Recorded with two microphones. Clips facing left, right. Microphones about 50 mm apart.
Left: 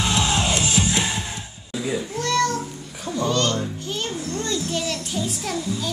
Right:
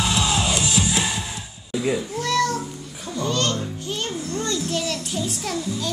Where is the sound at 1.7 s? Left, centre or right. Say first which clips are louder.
Right 3 dB; centre.